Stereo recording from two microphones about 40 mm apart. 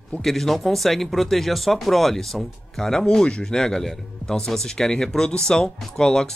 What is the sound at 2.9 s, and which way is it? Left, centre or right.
Speech, centre.